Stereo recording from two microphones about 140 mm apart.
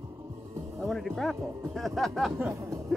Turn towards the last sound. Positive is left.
turn(degrees=0)  # may be behind; listen again after turning